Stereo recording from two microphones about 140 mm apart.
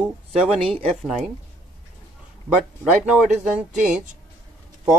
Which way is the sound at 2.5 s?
5° right (ahead or behind).